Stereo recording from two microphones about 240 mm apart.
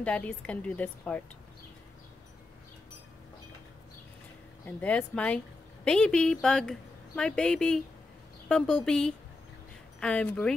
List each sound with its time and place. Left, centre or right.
0.0 s speech: centre
4.6 s speech: centre